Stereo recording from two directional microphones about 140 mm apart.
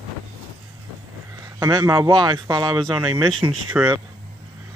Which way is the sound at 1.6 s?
25° right (ahead or behind).